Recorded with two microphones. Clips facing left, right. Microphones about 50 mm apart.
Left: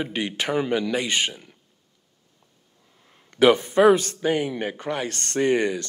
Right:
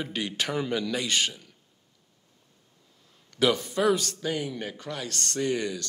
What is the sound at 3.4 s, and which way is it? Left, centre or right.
A man's voice, left.